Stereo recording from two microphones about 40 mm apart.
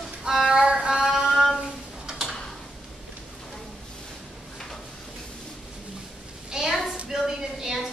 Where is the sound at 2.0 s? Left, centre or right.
Centre.